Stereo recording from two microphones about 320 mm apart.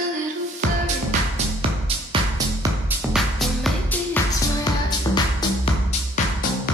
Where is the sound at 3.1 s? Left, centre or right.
Centre.